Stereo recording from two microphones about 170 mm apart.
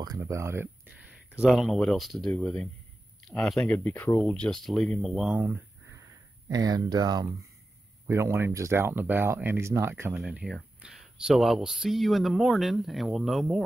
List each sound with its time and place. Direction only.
0.0 s speech: 20° right (ahead or behind)
1.4 s speech: centre (ahead or behind)
10.1 s speech: 5° right (ahead or behind)